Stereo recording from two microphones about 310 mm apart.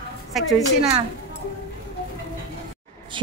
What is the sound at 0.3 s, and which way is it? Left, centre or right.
Speech, centre.